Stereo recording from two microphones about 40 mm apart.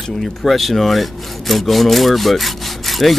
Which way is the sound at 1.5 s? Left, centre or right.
Centre.